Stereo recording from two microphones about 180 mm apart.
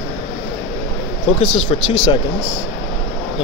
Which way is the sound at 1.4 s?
35° left (ahead or behind).